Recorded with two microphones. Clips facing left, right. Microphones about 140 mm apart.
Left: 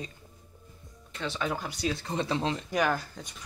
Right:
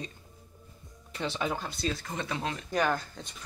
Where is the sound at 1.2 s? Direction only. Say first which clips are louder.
Right 1 dB; 15° right (ahead or behind).